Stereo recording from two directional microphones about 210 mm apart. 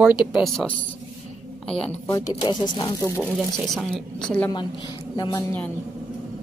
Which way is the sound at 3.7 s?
5° left (ahead or behind).